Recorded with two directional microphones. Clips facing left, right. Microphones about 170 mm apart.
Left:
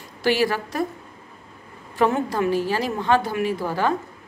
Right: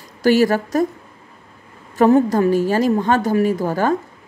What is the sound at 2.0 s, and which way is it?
A woman's voice, 40° right (ahead or behind).